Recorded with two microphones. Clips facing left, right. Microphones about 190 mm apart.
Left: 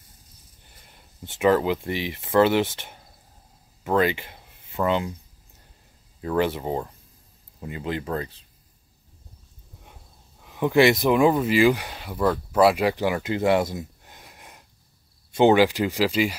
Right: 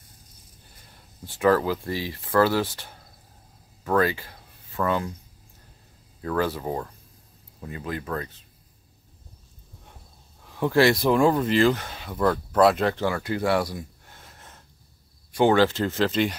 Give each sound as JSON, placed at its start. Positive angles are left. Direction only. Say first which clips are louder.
{"t": 1.2, "sound": "speech", "louder": "left 1 dB", "side_deg": 20}
{"t": 6.2, "sound": "speech", "louder": "left 2 dB", "side_deg": 20}
{"t": 10.4, "sound": "a sound", "louder": "left 1 dB", "side_deg": 10}
{"t": 10.8, "sound": "speech", "louder": "left 1 dB", "side_deg": 20}